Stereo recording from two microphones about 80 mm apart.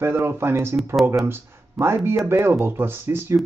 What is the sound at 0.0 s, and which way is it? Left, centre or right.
Speech, right.